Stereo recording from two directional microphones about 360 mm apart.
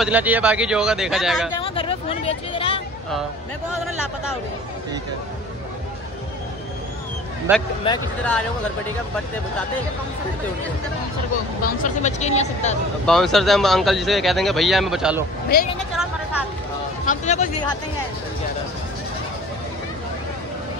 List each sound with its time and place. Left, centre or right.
0.0 s speech: centre
1.6 s speech: centre
7.5 s speech: centre
7.8 s speech: centre
11.6 s speech: left
13.0 s speech: centre
17.0 s speech: centre